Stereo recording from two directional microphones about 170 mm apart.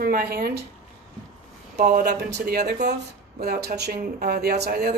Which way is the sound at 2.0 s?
70° right (ahead or behind).